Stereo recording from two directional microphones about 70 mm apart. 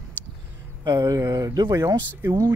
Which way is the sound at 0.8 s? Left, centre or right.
Right.